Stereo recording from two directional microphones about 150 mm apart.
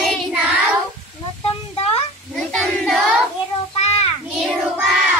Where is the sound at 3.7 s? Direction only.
45° left (ahead or behind).